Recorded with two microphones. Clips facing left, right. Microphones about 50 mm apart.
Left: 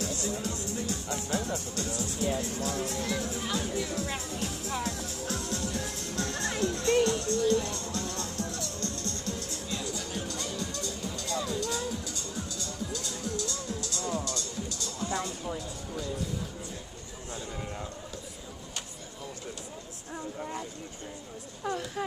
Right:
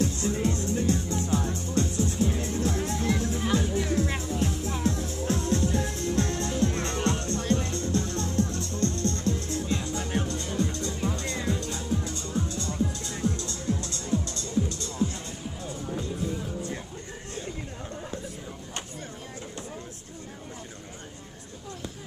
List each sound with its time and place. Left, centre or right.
0.0 s music: right
6.3 s music: left
6.6 s music: right
21.6 s a sound: left